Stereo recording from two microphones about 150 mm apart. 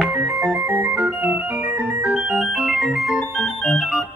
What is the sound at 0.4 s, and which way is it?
Organ, 10° right (ahead or behind).